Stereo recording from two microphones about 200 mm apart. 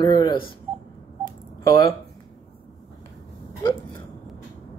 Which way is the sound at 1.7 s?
20° left (ahead or behind).